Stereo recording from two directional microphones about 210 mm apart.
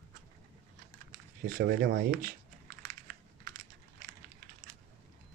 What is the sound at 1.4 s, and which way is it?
Speech, 45° right (ahead or behind).